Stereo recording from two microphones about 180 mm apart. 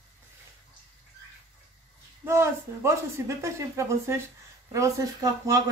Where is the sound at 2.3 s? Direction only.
15° right (ahead or behind).